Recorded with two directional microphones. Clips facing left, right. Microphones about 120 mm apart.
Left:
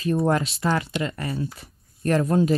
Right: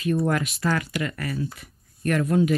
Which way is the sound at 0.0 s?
35° left (ahead or behind).